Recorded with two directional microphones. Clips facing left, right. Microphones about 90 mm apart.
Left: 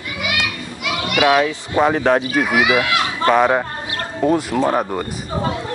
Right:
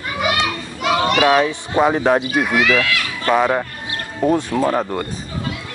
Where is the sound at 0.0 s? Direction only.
35° right (ahead or behind).